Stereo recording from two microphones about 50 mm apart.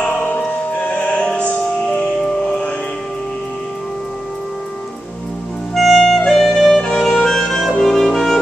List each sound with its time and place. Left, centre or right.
0.0 s music: left
5.8 s clarinet: centre
7.8 s music: centre